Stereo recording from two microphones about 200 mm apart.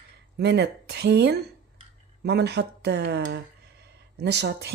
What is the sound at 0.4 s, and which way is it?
Speech, 60° right (ahead or behind).